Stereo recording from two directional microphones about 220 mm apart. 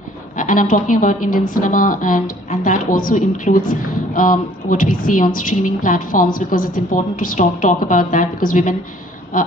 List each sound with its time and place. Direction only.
0.4 s a woman's voice: 35° left (ahead or behind)